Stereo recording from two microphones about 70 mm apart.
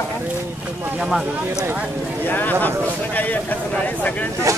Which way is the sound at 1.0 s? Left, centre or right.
Centre.